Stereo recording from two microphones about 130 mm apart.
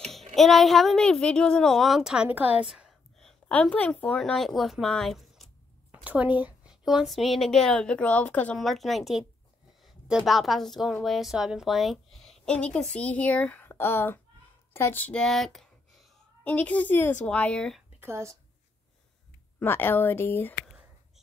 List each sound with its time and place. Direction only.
0.3 s a woman's voice: centre (ahead or behind)
5.9 s a woman's voice: 10° right (ahead or behind)
16.4 s a woman's voice: 10° left (ahead or behind)
18.0 s a woman's voice: 20° right (ahead or behind)
19.6 s a woman's voice: 15° left (ahead or behind)